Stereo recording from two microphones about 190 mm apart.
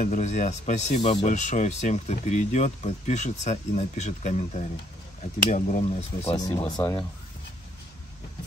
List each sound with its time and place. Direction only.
0.0 s speech: 40° left (ahead or behind)
6.4 s speech: 20° left (ahead or behind)